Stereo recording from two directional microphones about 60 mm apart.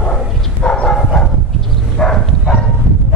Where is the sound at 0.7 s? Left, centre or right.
Centre.